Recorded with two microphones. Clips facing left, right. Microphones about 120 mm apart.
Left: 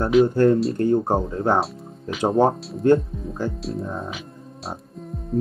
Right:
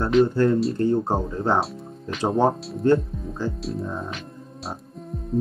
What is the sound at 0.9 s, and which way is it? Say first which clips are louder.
Speech: left 3 dB; 15° left (ahead or behind).